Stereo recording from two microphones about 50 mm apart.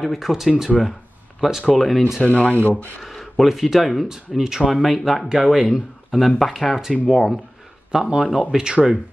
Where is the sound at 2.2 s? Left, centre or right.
Left.